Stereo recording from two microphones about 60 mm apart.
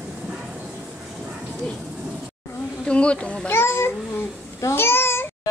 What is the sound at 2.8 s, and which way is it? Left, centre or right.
Bee, centre.